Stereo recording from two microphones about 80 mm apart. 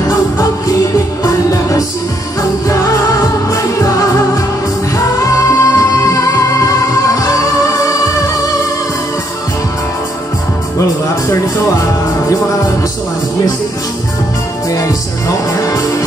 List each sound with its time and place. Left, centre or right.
0.1 s music: left
10.8 s music: left
14.7 s music: left